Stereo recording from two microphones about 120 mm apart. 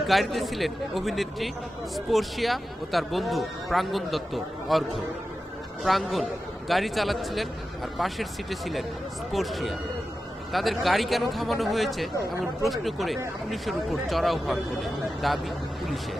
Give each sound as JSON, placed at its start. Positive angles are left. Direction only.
{"t": 0.0, "sound": "speech", "side_deg": 0}
{"t": 5.9, "sound": "speech", "side_deg": 0}